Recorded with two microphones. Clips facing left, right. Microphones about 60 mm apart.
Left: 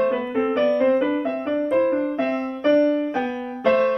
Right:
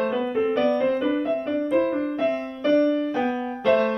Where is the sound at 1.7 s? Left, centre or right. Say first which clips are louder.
Left 3 dB; left.